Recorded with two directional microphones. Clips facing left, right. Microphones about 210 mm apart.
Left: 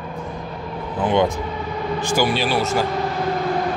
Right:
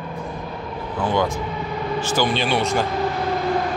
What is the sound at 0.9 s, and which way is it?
A man's voice, 20° left (ahead or behind).